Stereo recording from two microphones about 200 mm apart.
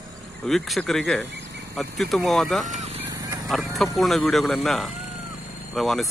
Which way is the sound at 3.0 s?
15° right (ahead or behind).